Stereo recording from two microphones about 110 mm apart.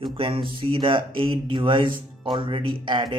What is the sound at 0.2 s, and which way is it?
Speech, 50° right (ahead or behind).